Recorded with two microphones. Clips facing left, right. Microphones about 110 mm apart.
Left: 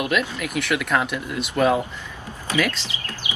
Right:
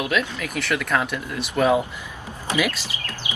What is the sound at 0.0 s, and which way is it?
Speech, 5° left (ahead or behind).